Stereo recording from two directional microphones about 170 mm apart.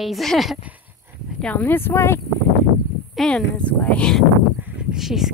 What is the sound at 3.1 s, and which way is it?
Speech, 5° left (ahead or behind).